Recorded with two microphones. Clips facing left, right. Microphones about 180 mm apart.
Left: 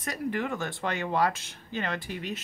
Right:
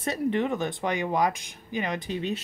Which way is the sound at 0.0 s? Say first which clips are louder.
Right 5 dB; 25° right (ahead or behind).